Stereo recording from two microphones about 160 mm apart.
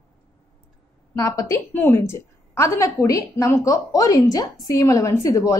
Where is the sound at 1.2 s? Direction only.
20° left (ahead or behind).